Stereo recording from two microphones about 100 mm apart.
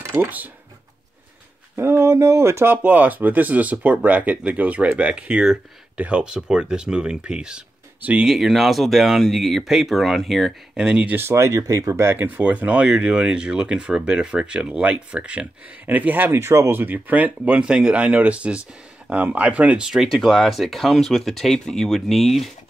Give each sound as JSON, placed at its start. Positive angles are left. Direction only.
{"t": 0.0, "sound": "speech", "side_deg": -20}
{"t": 1.8, "sound": "speech", "side_deg": -25}
{"t": 11.1, "sound": "speech", "side_deg": -25}